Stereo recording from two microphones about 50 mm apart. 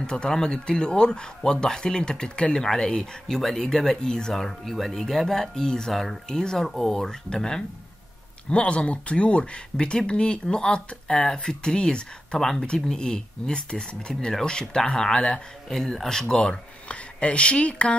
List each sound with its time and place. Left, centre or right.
0.0 s speech: centre
16.3 s speech: left